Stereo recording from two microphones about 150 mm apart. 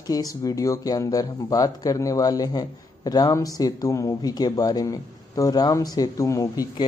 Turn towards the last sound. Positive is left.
turn(degrees=20)  # may be behind; listen again after turning